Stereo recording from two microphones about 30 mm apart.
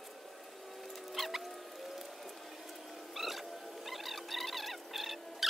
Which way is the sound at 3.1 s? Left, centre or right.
Centre.